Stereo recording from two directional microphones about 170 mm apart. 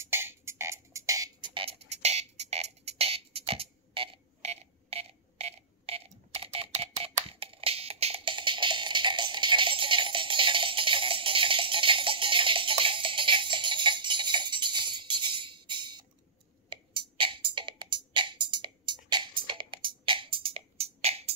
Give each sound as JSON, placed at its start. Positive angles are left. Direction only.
{"t": 0.0, "sound": "music", "side_deg": -15}